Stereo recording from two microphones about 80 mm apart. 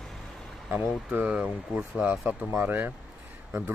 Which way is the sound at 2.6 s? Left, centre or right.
Right.